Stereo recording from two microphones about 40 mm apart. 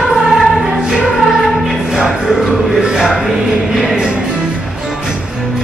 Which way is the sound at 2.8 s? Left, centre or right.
Centre.